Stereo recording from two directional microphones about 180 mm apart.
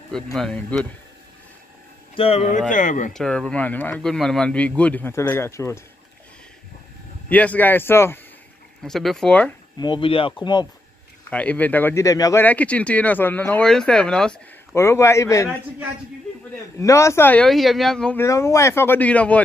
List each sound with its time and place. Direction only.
0.1 s speech: 5° left (ahead or behind)
2.1 s speech: 35° left (ahead or behind)
2.7 s speech: 45° left (ahead or behind)
3.1 s speech: 5° left (ahead or behind)
7.2 s speech: 10° left (ahead or behind)
8.8 s speech: centre (ahead or behind)
9.8 s speech: 25° left (ahead or behind)
11.2 s speech: 10° left (ahead or behind)
14.8 s speech: 15° left (ahead or behind)
16.8 s speech: 15° left (ahead or behind)
18.2 s speech: 15° left (ahead or behind)